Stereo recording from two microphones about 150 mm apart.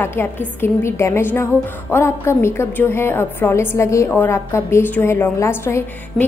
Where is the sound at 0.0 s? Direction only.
15° left (ahead or behind).